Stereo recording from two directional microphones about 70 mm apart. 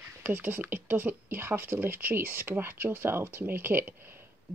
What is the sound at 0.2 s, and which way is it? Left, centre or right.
Speech, right.